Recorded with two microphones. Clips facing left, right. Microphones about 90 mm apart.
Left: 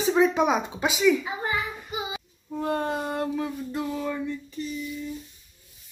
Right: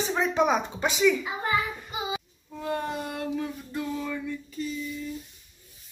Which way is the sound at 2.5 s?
40° left (ahead or behind).